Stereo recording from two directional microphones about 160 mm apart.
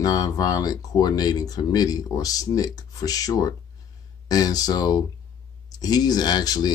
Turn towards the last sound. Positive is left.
turn(degrees=25)  # may be behind; listen again after turning